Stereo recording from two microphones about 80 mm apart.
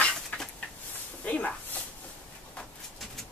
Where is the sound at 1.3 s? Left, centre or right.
Centre.